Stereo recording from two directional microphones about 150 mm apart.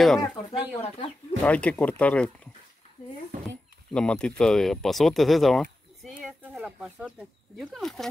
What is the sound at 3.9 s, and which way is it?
Speech, 5° left (ahead or behind).